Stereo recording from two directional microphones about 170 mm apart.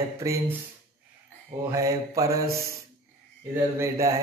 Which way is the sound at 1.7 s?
20° right (ahead or behind).